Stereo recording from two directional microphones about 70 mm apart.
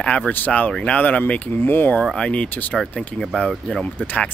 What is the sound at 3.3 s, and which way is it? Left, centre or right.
Speech, centre.